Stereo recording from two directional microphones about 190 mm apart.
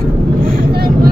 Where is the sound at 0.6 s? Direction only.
55° right (ahead or behind).